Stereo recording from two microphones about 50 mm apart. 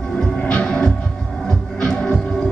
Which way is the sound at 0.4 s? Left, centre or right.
Left.